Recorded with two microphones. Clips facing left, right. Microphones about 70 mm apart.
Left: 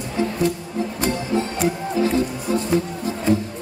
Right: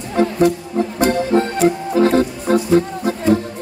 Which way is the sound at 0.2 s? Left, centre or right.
Right.